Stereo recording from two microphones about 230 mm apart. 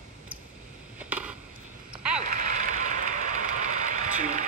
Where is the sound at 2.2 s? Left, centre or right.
Right.